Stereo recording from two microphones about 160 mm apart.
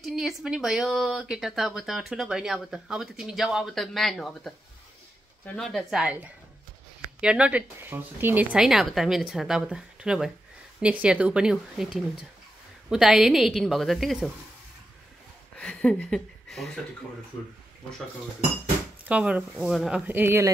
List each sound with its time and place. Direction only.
0.0 s speech: centre (ahead or behind)
15.5 s speech: 5° left (ahead or behind)
19.0 s speech: 10° right (ahead or behind)
20.1 s speech: 15° right (ahead or behind)